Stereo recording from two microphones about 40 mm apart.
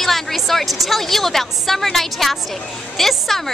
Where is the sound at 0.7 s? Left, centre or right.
Centre.